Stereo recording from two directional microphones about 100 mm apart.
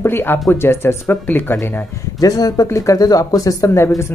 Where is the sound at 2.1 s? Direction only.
40° left (ahead or behind).